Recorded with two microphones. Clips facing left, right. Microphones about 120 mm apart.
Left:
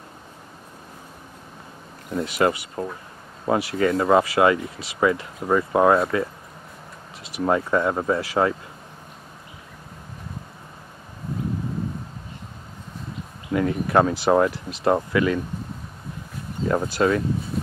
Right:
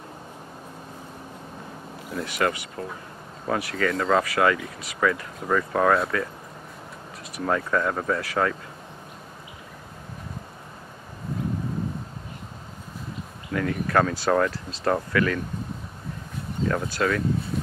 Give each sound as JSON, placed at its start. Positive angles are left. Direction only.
{"t": 2.1, "sound": "speech", "side_deg": 25}
{"t": 7.3, "sound": "speech", "side_deg": 20}
{"t": 13.5, "sound": "speech", "side_deg": 20}
{"t": 16.6, "sound": "speech", "side_deg": 20}